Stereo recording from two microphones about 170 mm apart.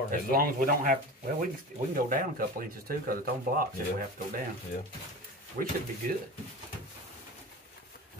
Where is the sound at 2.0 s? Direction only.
55° right (ahead or behind).